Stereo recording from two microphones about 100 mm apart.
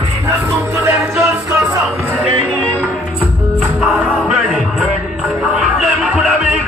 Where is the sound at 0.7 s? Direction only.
25° right (ahead or behind).